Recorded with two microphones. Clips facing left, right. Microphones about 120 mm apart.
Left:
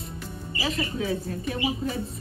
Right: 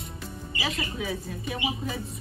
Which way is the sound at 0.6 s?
30° left (ahead or behind).